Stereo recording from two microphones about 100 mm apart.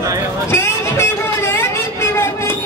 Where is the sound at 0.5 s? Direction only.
25° left (ahead or behind).